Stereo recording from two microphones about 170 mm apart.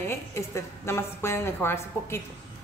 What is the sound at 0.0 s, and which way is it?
A woman's voice, 15° left (ahead or behind).